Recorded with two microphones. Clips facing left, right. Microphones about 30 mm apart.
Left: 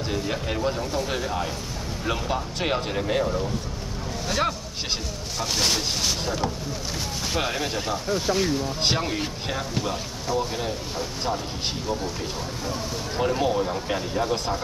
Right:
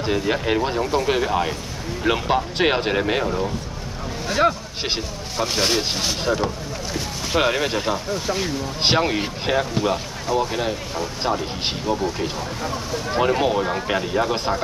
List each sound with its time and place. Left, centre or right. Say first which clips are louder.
0.0 s speech: right 6 dB; right
4.3 s speech: right 7 dB; centre; by 14.6 s right